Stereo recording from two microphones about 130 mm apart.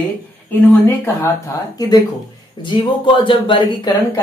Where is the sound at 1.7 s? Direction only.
30° left (ahead or behind).